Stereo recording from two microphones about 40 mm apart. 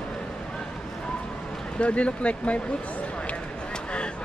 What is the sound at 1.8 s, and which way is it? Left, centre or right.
Speech, left.